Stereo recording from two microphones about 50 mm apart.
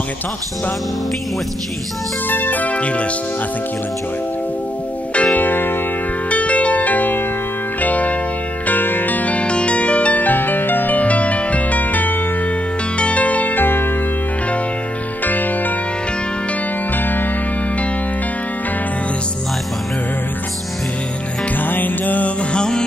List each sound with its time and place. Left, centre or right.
2.2 s music: left
5.1 s music: left
6.3 s music: left
8.6 s music: left
15.2 s music: left
21.6 s music: left
22.5 s music: centre